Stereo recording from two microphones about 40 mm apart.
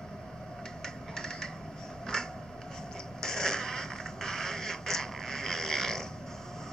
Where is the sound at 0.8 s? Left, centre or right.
Centre.